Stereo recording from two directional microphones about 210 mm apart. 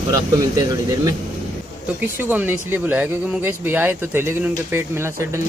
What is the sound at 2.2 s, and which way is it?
Speech, 10° right (ahead or behind).